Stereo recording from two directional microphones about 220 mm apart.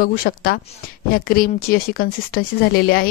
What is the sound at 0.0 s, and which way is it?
Speech, 40° left (ahead or behind).